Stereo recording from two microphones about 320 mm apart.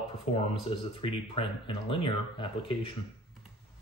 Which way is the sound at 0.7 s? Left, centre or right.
Centre.